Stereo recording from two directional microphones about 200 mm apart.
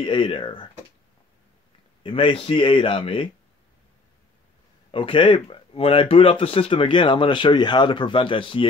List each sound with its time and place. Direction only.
0.0 s speech: 25° left (ahead or behind)
2.0 s speech: 25° left (ahead or behind)
4.9 s speech: 25° left (ahead or behind)